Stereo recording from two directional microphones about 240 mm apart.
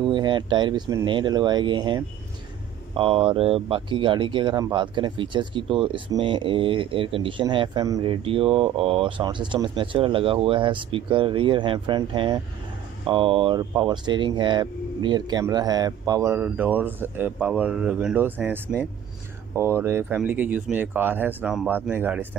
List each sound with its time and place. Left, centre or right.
0.0 s speech: centre